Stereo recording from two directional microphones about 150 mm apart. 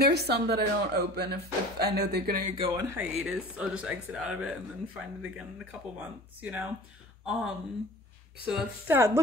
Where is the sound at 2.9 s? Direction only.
5° right (ahead or behind).